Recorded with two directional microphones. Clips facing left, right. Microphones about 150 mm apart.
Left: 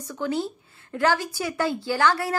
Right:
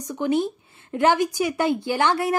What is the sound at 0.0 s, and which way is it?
Speech, 20° right (ahead or behind).